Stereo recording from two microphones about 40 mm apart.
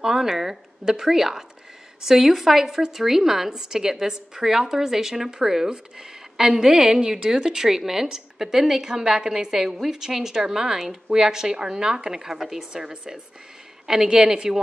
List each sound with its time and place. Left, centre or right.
0.0 s a woman's voice: centre
7.0 s a woman's voice: right